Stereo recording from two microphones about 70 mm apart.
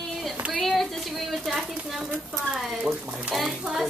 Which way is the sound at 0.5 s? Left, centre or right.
Centre.